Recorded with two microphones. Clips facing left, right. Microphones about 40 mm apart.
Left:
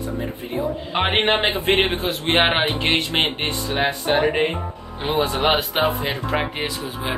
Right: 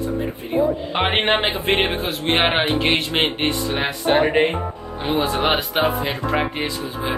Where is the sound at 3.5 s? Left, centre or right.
Right.